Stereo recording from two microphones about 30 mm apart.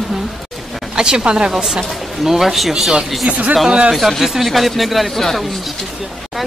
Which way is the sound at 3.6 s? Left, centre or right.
Right.